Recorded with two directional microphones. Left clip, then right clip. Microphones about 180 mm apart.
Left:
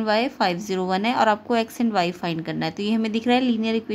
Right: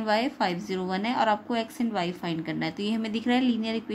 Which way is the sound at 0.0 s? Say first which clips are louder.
Left 4 dB; 25° left (ahead or behind).